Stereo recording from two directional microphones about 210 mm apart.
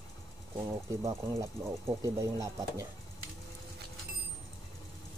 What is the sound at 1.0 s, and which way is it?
Speech, 15° right (ahead or behind).